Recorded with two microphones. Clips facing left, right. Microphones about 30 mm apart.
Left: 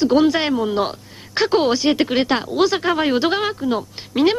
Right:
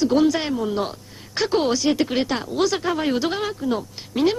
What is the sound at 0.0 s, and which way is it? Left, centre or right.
A woman's voice, left.